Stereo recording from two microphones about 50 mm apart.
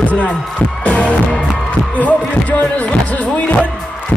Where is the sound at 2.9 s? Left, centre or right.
Left.